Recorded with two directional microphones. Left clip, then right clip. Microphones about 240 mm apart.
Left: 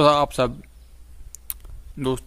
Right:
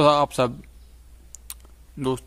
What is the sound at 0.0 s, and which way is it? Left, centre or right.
A man's voice, centre.